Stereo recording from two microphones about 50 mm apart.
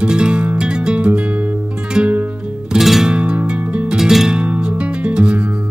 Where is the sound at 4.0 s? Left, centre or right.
Centre.